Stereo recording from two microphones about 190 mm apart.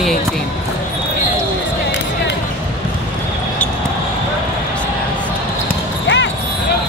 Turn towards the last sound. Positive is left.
turn(degrees=70)  # may be behind; listen again after turning